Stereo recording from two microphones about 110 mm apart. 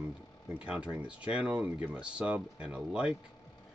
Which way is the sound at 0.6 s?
10° right (ahead or behind).